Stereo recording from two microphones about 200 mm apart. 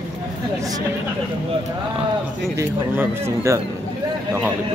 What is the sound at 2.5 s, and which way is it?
A man's voice, 15° right (ahead or behind).